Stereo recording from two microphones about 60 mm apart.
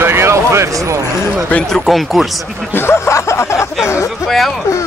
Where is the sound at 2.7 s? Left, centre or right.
Left.